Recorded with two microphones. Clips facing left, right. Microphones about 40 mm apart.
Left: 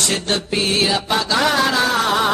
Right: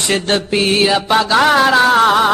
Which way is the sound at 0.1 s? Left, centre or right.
Right.